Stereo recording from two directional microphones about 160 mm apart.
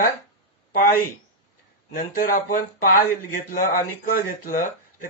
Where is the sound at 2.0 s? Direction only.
60° left (ahead or behind).